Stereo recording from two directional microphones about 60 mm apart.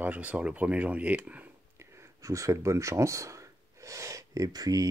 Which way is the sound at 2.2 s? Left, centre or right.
Right.